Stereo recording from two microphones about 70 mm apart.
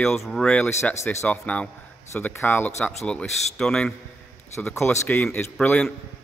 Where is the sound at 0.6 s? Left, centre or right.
Left.